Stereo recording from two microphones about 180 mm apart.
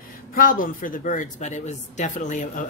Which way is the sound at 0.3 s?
50° left (ahead or behind).